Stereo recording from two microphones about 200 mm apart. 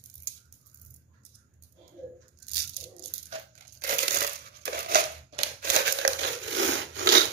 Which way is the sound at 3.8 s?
50° right (ahead or behind).